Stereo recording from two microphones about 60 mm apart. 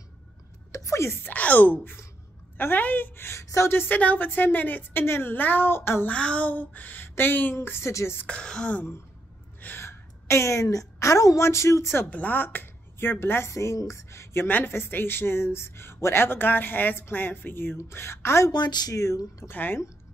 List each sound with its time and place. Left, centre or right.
0.7 s a sound: left
1.2 s speech: left
6.0 s speech: centre; by 7.5 s left
7.5 s a woman's voice: left
8.3 s speech: centre
9.8 s a woman's voice: left
12.1 s speech: left
13.5 s a woman's voice: left
17.7 s a woman's voice: left
18.9 s speech: left
19.5 s speech: left